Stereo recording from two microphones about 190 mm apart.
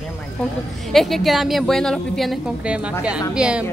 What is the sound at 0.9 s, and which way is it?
A woman's voice, centre (ahead or behind).